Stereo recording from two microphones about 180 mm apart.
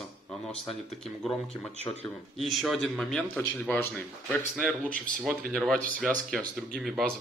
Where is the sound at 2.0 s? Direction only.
Centre (ahead or behind).